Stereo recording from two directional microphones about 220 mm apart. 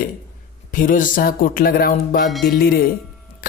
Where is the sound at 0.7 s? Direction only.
35° left (ahead or behind).